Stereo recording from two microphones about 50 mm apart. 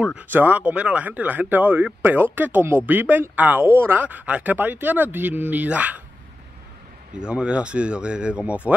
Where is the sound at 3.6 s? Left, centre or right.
Right.